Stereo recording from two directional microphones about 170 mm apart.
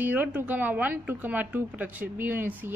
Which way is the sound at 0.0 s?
10° right (ahead or behind).